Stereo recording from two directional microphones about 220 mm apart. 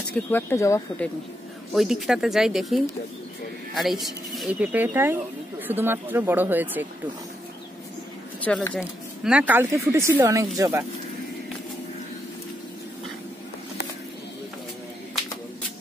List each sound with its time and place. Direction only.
0.3 s speech: 10° left (ahead or behind)
1.7 s speech: centre (ahead or behind)
8.5 s speech: 5° left (ahead or behind); by 10.9 s 10° right (ahead or behind)